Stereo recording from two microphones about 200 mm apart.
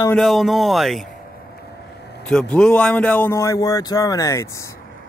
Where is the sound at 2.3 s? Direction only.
5° left (ahead or behind).